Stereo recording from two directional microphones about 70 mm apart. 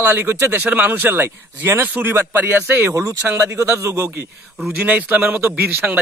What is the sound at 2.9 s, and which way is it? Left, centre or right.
Speech, right.